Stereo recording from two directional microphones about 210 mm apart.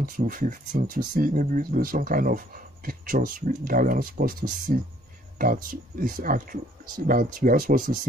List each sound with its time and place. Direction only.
0.0 s speech: 40° right (ahead or behind)